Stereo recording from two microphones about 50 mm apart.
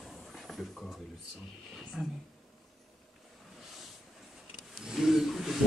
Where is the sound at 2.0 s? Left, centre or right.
Centre.